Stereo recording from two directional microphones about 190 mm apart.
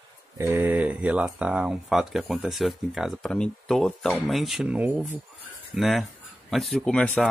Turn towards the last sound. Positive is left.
turn(degrees=5)  # may be behind; listen again after turning